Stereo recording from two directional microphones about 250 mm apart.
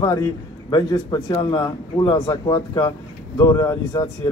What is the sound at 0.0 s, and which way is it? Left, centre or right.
A man's voice, centre.